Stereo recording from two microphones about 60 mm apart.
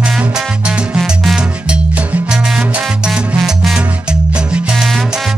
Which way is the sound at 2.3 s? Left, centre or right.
Centre.